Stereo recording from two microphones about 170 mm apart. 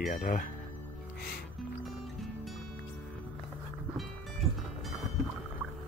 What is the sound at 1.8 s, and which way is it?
Music, centre (ahead or behind).